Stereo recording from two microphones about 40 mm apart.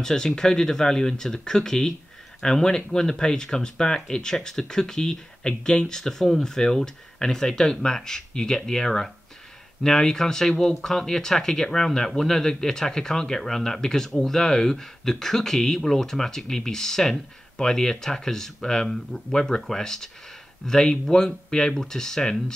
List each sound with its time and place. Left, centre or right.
0.0 s speech: centre